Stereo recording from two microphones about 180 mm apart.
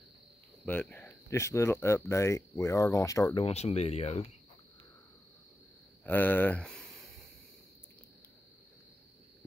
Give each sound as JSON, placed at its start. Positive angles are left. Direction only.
{"t": 0.7, "sound": "speech", "side_deg": 10}
{"t": 3.4, "sound": "speech", "side_deg": 35}
{"t": 6.0, "sound": "speech", "side_deg": 10}